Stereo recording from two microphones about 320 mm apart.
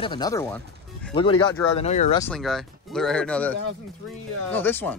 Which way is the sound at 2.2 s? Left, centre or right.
Centre.